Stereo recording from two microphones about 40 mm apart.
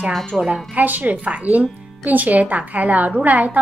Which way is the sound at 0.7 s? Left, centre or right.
Right.